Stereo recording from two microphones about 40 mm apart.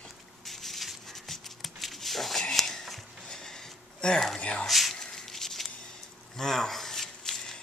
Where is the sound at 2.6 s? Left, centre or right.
Centre.